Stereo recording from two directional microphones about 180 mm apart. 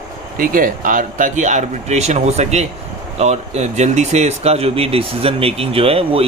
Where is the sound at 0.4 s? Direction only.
50° right (ahead or behind).